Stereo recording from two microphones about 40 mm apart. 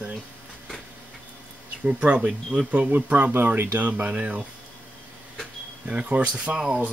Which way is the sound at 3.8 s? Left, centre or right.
Right.